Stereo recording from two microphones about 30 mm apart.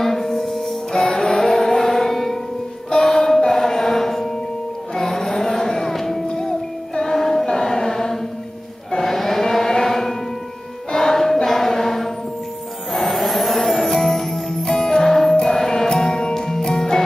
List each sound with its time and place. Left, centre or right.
0.0 s music: centre
1.7 s a sound: centre
2.9 s music: centre
7.2 s choir: centre
7.5 s chant: centre
10.9 s music: centre
14.5 s music: left